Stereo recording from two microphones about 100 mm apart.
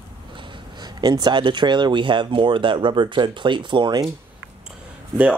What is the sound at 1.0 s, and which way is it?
Speech, 45° right (ahead or behind).